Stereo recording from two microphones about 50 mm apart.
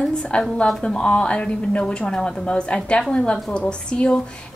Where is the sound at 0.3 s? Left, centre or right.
Left.